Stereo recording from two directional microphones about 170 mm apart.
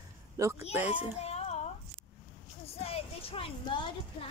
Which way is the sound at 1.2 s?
40° left (ahead or behind).